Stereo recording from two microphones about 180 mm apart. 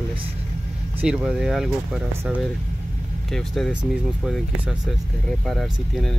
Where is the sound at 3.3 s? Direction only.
Centre (ahead or behind).